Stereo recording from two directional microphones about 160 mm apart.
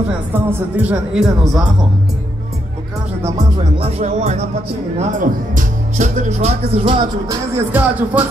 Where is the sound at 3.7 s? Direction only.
40° right (ahead or behind).